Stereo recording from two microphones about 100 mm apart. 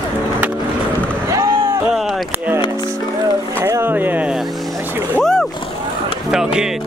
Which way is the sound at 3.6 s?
25° right (ahead or behind).